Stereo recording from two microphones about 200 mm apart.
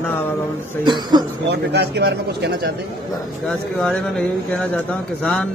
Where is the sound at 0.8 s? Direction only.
20° right (ahead or behind).